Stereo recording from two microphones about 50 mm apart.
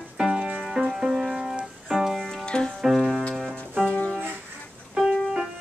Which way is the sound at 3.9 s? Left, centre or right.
Left.